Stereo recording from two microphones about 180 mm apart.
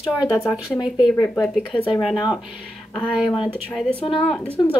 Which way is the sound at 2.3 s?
5° right (ahead or behind).